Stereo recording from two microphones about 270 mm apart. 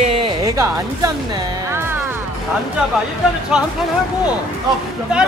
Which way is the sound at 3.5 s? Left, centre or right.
Centre.